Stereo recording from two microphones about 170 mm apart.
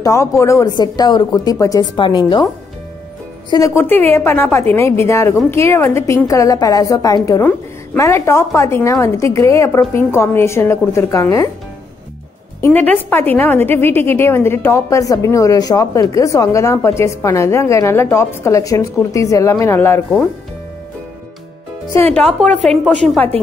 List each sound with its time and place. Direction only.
0.0 s a woman's voice: 15° left (ahead or behind)
12.5 s a woman's voice: 10° left (ahead or behind)
22.1 s a woman's voice: 5° left (ahead or behind)